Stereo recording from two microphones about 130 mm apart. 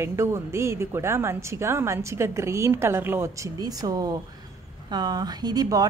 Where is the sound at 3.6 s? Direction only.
30° right (ahead or behind).